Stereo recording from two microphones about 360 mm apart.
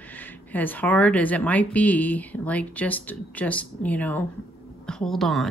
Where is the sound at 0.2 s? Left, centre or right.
Centre.